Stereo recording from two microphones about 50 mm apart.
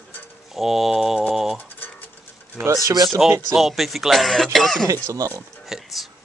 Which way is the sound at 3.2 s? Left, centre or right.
Centre.